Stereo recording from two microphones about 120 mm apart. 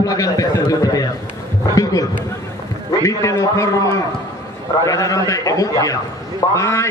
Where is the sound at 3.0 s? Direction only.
25° left (ahead or behind).